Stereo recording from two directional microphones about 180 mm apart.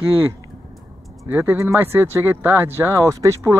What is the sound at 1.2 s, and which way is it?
Speech, 10° right (ahead or behind).